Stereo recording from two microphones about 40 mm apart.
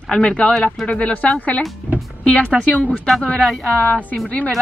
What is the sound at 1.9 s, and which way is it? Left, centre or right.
Speech, right.